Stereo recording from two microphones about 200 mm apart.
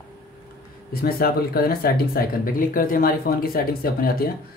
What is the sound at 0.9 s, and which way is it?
Speech, 50° left (ahead or behind).